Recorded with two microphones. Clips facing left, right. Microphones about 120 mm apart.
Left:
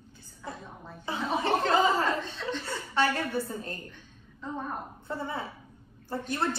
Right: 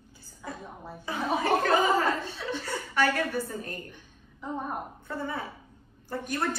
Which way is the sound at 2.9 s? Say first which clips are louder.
Right 1 dB; 25° left (ahead or behind).